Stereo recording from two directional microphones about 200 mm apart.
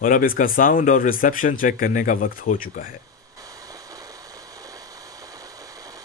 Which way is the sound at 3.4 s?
15° right (ahead or behind).